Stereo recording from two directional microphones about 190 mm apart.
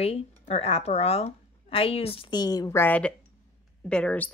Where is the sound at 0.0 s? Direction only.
30° left (ahead or behind).